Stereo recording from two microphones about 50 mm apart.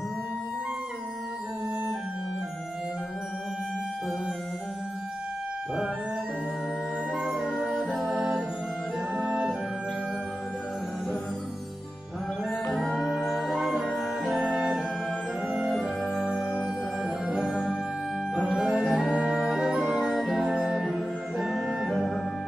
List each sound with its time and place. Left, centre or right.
7.2 s music: centre
12.8 s music: centre
16.0 s organ: centre
16.3 s music: centre
20.1 s music: centre